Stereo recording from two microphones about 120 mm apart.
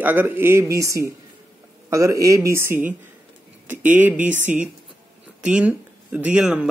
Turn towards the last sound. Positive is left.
turn(degrees=-10)  # may be behind; listen again after turning